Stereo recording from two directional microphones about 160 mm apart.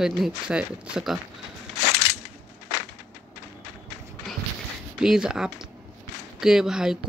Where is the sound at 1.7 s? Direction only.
90° left.